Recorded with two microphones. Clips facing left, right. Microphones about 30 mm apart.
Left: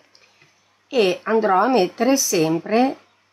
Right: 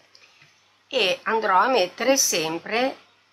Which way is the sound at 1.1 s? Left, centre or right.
Right.